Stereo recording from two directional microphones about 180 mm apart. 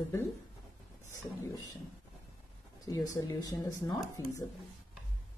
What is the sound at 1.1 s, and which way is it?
Speech, 20° left (ahead or behind).